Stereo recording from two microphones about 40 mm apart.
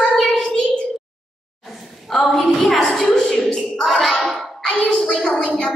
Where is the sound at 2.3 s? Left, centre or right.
Centre.